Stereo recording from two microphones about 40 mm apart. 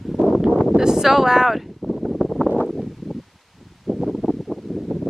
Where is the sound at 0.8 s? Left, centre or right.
Centre.